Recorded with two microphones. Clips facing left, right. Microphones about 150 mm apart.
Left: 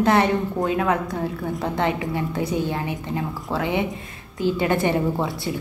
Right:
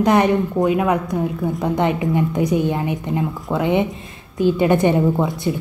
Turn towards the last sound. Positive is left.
turn(degrees=-20)  # may be behind; listen again after turning